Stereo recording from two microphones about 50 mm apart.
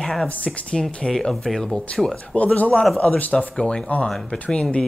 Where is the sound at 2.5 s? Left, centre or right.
Left.